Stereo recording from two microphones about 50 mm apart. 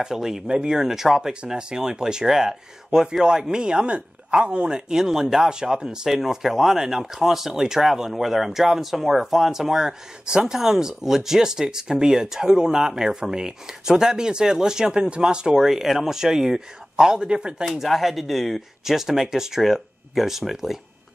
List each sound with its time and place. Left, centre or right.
0.0 s speech: centre
17.7 s speech: centre